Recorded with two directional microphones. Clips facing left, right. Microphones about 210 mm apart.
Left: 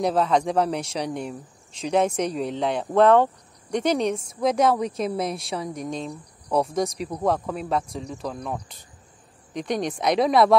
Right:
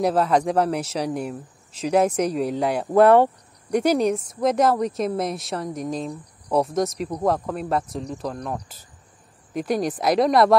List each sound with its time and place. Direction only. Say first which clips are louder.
0.0 s a woman's voice: right 2 dB; 5° right (ahead or behind)